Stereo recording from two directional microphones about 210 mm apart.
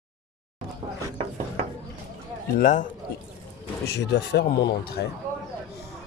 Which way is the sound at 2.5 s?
35° left (ahead or behind).